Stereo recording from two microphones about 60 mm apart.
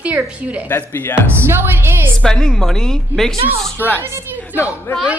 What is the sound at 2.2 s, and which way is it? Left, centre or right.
A woman's voice, centre.